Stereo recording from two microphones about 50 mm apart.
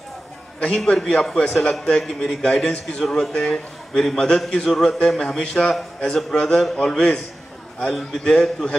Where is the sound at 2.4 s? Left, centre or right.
Centre.